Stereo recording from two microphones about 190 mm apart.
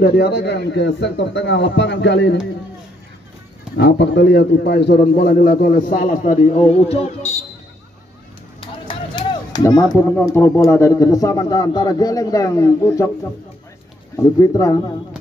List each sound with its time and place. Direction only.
0.0 s a man's voice: 60° left (ahead or behind)
3.7 s a man's voice: 65° left (ahead or behind); by 7.4 s 35° left (ahead or behind)
8.5 s a sound: 25° left (ahead or behind)
9.8 s speech: 10° left (ahead or behind)
14.1 s speech: 15° left (ahead or behind)